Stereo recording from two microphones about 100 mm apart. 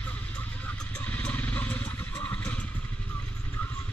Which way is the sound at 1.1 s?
15° left (ahead or behind).